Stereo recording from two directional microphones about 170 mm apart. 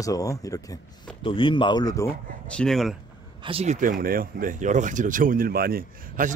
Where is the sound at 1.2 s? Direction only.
30° left (ahead or behind).